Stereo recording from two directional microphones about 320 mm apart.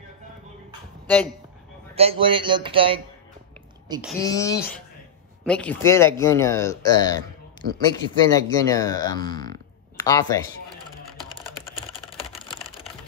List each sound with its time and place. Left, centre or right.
1.0 s speech: centre
2.0 s speech: centre
4.2 s speech: centre